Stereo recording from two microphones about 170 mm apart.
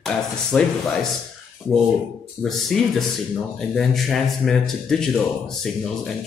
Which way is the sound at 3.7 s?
Centre (ahead or behind).